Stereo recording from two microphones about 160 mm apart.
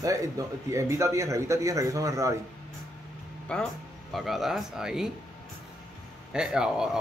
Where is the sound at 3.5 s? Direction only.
5° left (ahead or behind).